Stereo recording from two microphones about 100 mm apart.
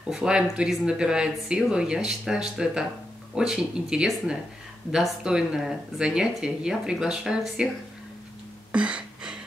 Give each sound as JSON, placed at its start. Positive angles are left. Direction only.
{"t": 0.1, "sound": "speech", "side_deg": -10}
{"t": 8.7, "sound": "gasp", "side_deg": -10}